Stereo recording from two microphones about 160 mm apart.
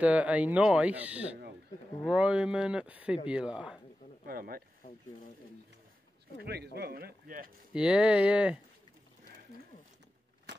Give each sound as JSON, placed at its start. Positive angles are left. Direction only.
{"t": 0.0, "sound": "speech", "side_deg": -10}
{"t": 4.3, "sound": "speech", "side_deg": -70}
{"t": 6.4, "sound": "speech", "side_deg": -90}
{"t": 7.7, "sound": "speech", "side_deg": -5}